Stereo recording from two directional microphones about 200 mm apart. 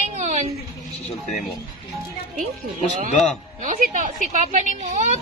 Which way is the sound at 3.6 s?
40° right (ahead or behind).